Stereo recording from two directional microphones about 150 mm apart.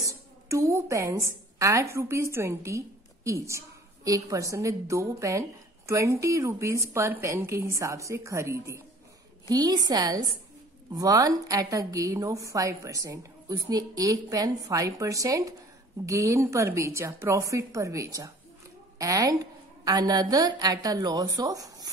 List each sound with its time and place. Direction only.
0.0 s a woman's voice: 20° right (ahead or behind)